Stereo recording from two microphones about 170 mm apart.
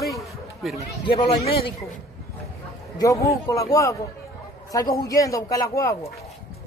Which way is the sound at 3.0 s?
20° left (ahead or behind).